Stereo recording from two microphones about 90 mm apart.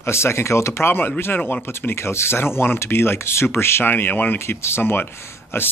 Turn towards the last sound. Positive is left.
turn(degrees=30)  # may be behind; listen again after turning